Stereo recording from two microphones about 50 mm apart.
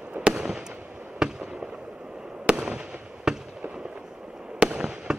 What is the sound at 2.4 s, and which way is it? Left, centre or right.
Fireworks, centre.